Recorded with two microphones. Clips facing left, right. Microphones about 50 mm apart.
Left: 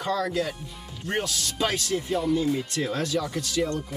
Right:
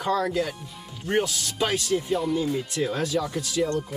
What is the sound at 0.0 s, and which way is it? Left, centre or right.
Speech, centre.